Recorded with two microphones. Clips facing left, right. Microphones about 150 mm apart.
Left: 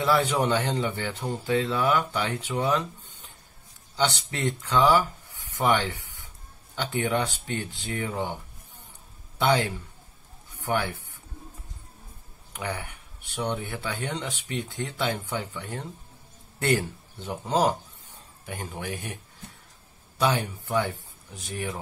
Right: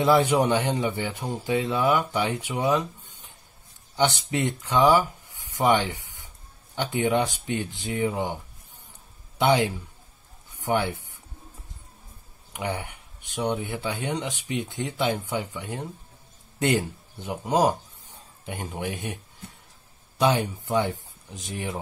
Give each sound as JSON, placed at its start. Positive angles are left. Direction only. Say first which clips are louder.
{"t": 0.0, "sound": "speech", "louder": "right 4 dB", "side_deg": -15}
{"t": 9.4, "sound": "speech", "louder": "right 2 dB", "side_deg": -15}
{"t": 12.5, "sound": "a man's voice", "louder": "right 3 dB", "side_deg": -15}
{"t": 20.2, "sound": "a man's voice", "louder": "right 3 dB", "side_deg": -20}